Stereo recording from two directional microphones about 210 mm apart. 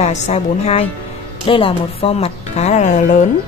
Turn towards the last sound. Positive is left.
turn(degrees=35)  # may be behind; listen again after turning